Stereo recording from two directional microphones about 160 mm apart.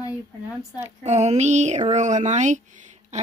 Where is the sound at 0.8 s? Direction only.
45° right (ahead or behind).